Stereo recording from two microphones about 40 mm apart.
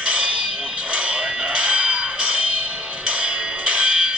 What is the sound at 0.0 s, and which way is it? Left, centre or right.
Fire alarm, right.